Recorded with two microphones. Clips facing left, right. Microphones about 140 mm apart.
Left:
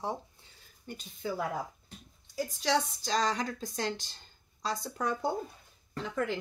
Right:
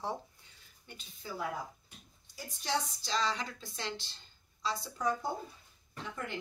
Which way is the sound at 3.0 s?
45° left (ahead or behind).